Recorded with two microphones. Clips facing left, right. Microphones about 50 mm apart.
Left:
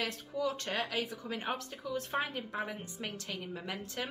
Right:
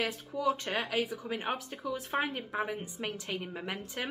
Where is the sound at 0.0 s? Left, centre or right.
Centre.